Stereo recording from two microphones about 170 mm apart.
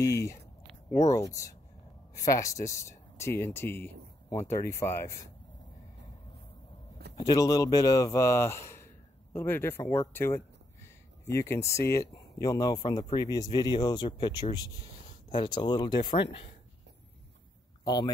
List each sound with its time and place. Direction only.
0.9 s speech: 20° left (ahead or behind)
7.2 s speech: 20° left (ahead or behind)
17.8 s speech: 25° left (ahead or behind)